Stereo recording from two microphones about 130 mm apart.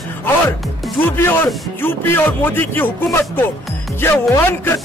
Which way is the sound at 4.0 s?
15° left (ahead or behind).